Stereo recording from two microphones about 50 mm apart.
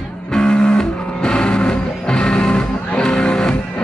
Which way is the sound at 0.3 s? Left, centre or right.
Centre.